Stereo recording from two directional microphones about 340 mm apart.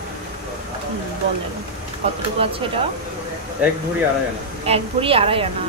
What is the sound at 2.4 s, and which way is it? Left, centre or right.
Speech, centre.